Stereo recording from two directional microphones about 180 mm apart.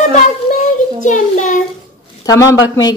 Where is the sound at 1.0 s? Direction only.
45° left (ahead or behind).